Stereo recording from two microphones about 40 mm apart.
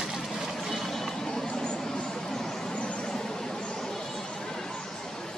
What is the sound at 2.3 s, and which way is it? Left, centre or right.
Vehicle, centre.